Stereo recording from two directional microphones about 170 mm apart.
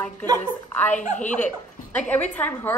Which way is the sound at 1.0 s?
45° left (ahead or behind).